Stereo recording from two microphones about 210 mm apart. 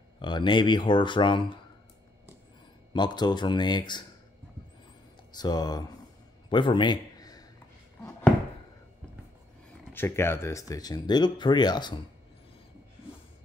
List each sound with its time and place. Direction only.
0.2 s speech: 20° left (ahead or behind)
2.9 s speech: 20° left (ahead or behind)
5.3 s speech: 20° left (ahead or behind)
6.5 s a sound: 20° left (ahead or behind)
9.9 s speech: 10° left (ahead or behind)